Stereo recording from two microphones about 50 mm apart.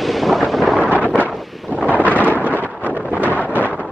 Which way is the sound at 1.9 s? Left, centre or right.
Left.